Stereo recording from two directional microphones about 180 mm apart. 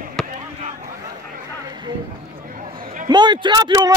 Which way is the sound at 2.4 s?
50° right (ahead or behind).